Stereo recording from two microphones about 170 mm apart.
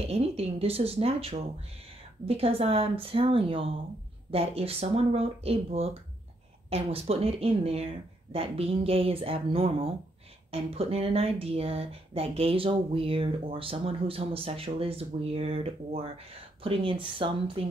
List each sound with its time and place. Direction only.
0.0 s speech: 35° right (ahead or behind)